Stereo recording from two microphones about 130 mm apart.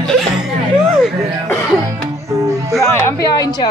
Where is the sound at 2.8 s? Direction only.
20° left (ahead or behind).